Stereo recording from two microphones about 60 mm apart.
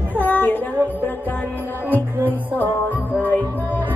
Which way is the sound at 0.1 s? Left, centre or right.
Left.